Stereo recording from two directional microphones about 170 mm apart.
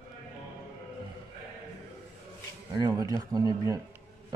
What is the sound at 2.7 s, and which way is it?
Speech, 20° right (ahead or behind).